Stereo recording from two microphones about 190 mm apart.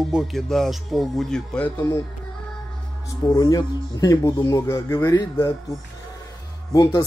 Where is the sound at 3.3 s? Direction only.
20° left (ahead or behind).